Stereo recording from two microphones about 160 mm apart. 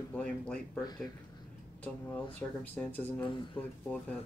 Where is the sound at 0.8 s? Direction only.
25° left (ahead or behind).